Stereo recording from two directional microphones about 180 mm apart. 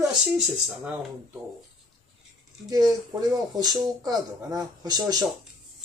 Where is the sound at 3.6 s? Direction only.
20° right (ahead or behind).